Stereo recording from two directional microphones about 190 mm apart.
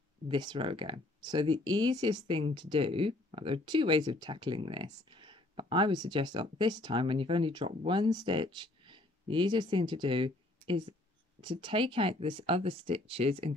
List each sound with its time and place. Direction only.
0.3 s speech: 25° right (ahead or behind)